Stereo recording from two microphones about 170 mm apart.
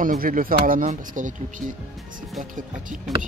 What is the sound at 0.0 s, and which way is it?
Speech, 55° right (ahead or behind).